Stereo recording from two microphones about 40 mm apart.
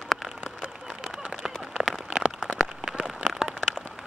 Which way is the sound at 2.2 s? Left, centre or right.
Right.